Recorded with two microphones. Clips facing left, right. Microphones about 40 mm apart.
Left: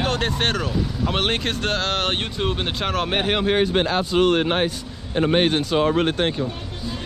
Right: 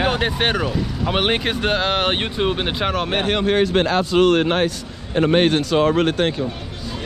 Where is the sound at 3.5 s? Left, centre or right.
Right.